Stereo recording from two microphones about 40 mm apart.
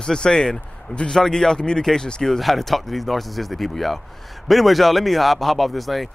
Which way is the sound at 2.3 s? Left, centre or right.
Centre.